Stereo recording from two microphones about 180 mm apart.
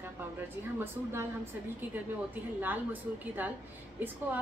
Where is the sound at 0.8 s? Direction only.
15° right (ahead or behind).